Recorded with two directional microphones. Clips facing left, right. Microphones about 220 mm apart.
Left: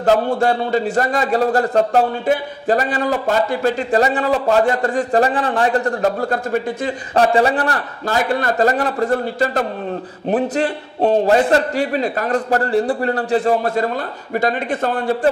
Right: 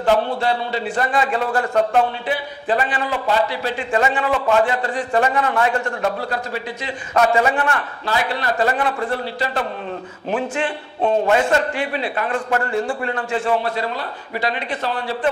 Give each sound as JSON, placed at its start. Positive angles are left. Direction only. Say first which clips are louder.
{"t": 0.0, "sound": "a man's voice", "louder": "left 3 dB", "side_deg": 45}
{"t": 7.2, "sound": "a man's voice", "louder": "left 2 dB", "side_deg": 35}